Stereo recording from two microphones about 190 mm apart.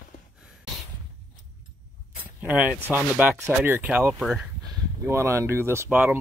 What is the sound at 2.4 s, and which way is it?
Speech, 10° right (ahead or behind).